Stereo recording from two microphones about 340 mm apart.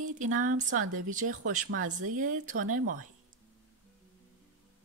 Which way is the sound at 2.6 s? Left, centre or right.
Right.